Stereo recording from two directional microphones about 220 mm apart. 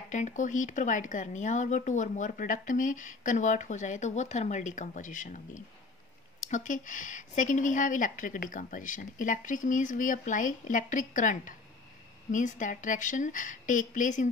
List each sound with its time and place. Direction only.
0.1 s a woman's voice: 35° left (ahead or behind)
6.4 s a woman's voice: 35° left (ahead or behind)